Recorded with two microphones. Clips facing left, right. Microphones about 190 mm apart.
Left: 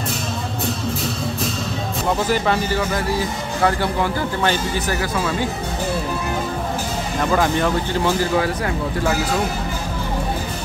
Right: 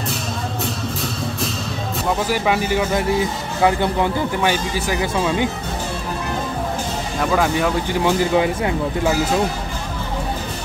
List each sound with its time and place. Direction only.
2.3 s a man's voice: 10° right (ahead or behind)
7.2 s a man's voice: centre (ahead or behind); by 9.1 s 20° right (ahead or behind)